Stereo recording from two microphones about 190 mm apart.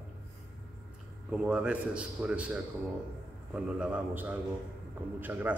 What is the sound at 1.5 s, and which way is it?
A man's voice, 5° right (ahead or behind).